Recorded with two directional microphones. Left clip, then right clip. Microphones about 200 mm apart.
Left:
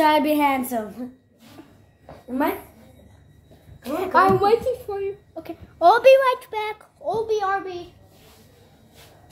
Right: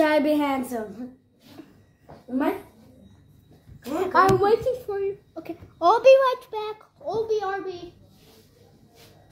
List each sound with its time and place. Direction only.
0.0 s a child's voice: 20° left (ahead or behind)
0.7 s a child's voice: 40° left (ahead or behind)
3.8 s a child's voice: 5° right (ahead or behind)
5.8 s a child's voice: 20° left (ahead or behind)